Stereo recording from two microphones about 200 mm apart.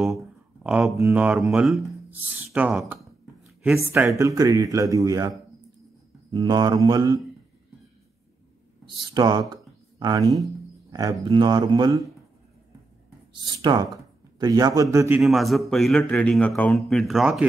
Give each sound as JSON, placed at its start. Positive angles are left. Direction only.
{"t": 0.0, "sound": "a sound", "side_deg": 0}
{"t": 0.9, "sound": "speech", "side_deg": -10}
{"t": 6.3, "sound": "mantra", "side_deg": -20}
{"t": 8.8, "sound": "speech", "side_deg": -20}
{"t": 11.2, "sound": "mantra", "side_deg": -25}
{"t": 13.3, "sound": "mantra", "side_deg": -20}
{"t": 14.4, "sound": "a man's voice", "side_deg": -20}